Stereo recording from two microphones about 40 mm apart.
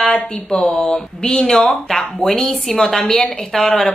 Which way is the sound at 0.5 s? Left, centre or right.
Left.